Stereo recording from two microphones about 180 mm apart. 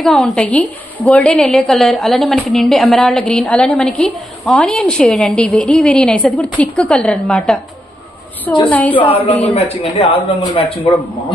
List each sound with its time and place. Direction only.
0.0 s a woman's voice: centre (ahead or behind)
8.6 s a woman's voice: 10° left (ahead or behind)
9.5 s speech: 30° left (ahead or behind)